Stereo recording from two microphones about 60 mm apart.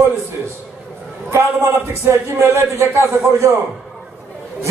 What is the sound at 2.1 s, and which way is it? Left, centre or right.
A man's voice, right.